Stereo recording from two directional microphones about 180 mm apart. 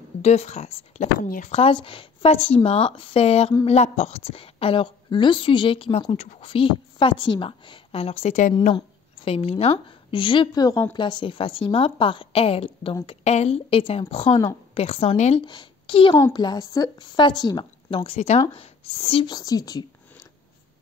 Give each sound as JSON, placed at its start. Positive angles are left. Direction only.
{"t": 0.2, "sound": "a woman's voice", "side_deg": 35}